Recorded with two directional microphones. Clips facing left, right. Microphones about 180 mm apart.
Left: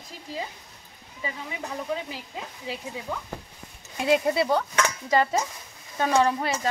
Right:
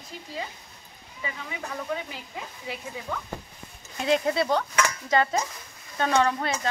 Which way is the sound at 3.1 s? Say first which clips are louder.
Even; 10° left (ahead or behind).